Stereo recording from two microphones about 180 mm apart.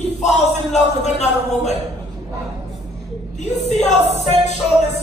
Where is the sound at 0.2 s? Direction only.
40° left (ahead or behind).